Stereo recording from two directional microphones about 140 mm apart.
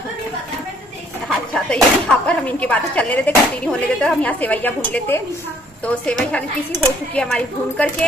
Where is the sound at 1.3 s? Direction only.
5° left (ahead or behind).